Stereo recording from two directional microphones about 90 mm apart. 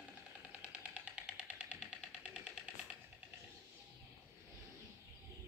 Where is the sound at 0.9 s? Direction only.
15° right (ahead or behind).